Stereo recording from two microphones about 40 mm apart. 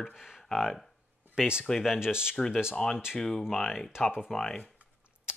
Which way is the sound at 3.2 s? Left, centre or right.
Centre.